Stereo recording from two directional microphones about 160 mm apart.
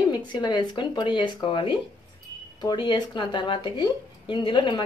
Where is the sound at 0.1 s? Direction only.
25° left (ahead or behind).